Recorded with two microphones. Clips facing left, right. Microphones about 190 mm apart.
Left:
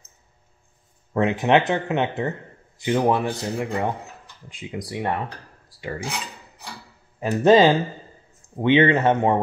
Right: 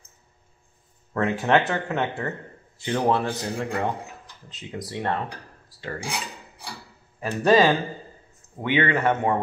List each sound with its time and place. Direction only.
1.1 s speech: 20° left (ahead or behind)
6.0 s cutlery: 10° right (ahead or behind)
7.2 s speech: 20° left (ahead or behind)